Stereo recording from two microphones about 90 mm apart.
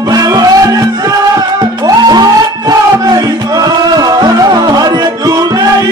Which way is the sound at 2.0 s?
50° right (ahead or behind).